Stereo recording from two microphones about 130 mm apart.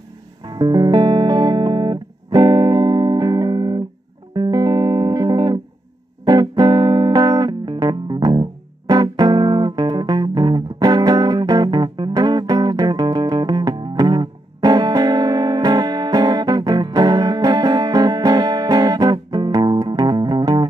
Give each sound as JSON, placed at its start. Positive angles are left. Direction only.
{"t": 0.5, "sound": "music", "side_deg": -35}